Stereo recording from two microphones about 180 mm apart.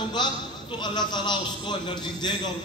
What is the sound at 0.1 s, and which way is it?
A man's voice, 25° left (ahead or behind).